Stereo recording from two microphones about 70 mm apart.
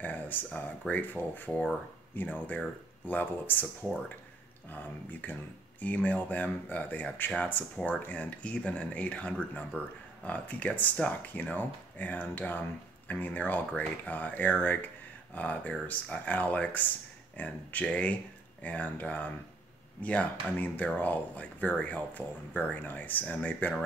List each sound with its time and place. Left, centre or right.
0.0 s speech: left
4.6 s speech: left